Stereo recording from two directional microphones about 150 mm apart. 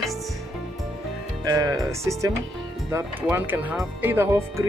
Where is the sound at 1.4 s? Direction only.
25° right (ahead or behind).